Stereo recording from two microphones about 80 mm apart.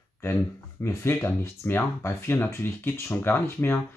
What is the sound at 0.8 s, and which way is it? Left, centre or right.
Speech, left.